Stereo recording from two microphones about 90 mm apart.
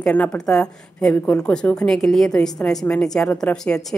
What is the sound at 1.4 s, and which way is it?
A woman's voice, 10° left (ahead or behind).